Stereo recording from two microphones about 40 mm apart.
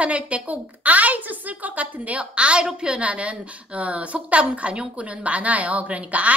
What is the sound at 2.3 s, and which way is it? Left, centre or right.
A woman's voice, right.